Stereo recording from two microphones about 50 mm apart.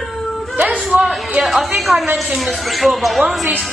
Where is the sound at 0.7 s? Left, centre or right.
Right.